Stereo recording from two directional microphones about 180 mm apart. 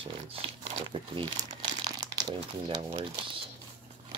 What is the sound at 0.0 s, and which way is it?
Speech, 30° right (ahead or behind).